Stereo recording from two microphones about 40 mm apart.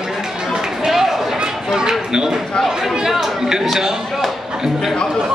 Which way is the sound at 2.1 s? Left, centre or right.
Centre.